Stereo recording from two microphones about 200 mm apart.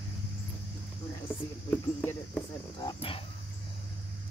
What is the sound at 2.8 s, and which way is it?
Speech, 25° left (ahead or behind).